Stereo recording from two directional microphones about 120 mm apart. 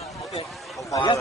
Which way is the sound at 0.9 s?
40° left (ahead or behind).